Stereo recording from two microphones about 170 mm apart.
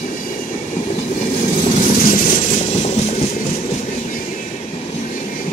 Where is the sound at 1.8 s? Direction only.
50° left (ahead or behind).